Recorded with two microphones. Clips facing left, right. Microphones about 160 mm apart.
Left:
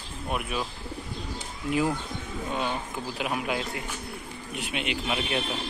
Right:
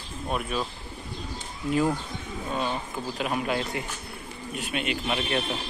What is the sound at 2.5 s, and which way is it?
Speech, 10° left (ahead or behind).